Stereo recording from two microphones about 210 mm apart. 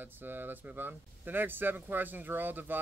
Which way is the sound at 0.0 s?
10° right (ahead or behind).